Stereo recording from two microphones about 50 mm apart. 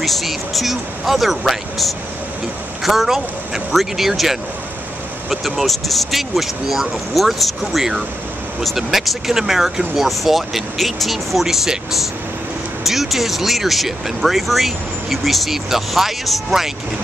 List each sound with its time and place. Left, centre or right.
0.0 s speech: centre